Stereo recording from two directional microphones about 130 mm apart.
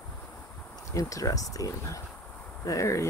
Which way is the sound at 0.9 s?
25° left (ahead or behind).